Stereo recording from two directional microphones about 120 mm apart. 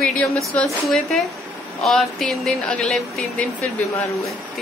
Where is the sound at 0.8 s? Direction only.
5° left (ahead or behind).